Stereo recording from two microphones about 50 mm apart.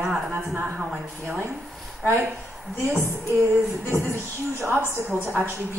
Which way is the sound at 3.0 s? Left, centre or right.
Right.